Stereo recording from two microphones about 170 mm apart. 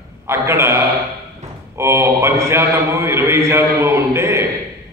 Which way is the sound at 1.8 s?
15° right (ahead or behind).